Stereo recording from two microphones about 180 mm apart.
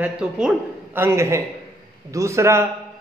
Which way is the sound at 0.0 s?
5° right (ahead or behind).